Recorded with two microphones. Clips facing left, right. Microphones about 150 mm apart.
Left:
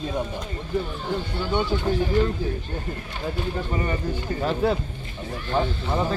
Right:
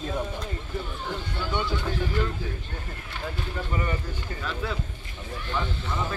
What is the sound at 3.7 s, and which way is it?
Speech, 35° left (ahead or behind).